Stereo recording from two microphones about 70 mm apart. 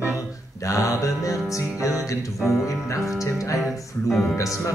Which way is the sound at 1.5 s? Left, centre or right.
Left.